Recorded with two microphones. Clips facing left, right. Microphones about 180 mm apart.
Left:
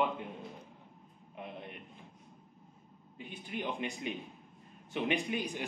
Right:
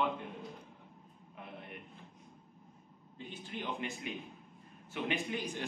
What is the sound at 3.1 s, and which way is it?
A man's voice, 15° left (ahead or behind).